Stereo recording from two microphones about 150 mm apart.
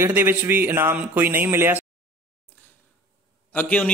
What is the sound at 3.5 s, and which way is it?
Speech, 10° left (ahead or behind).